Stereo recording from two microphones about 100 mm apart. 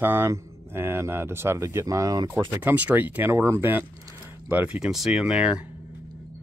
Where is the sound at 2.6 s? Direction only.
15° right (ahead or behind).